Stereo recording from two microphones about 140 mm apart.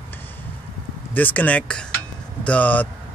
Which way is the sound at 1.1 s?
10° left (ahead or behind).